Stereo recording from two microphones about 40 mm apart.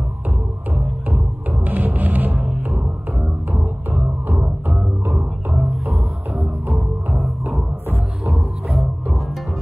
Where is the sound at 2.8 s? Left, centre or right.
Right.